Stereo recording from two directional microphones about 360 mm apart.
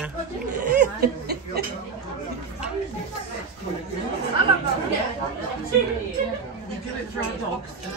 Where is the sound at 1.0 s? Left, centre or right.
Right.